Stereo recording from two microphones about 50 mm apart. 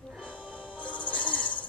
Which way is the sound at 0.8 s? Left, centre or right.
Left.